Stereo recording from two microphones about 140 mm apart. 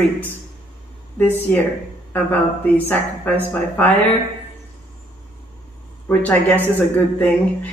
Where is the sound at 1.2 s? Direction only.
15° left (ahead or behind).